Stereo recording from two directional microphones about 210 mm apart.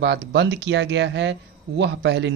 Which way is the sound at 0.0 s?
55° right (ahead or behind).